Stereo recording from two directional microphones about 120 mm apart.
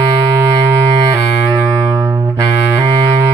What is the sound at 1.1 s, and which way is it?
Saxophone, 30° right (ahead or behind).